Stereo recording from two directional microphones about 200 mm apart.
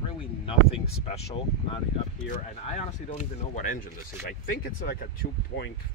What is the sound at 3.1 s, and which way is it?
Speech, 40° left (ahead or behind).